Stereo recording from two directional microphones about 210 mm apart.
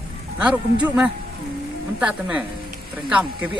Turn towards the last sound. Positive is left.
turn(degrees=-5)  # may be behind; listen again after turning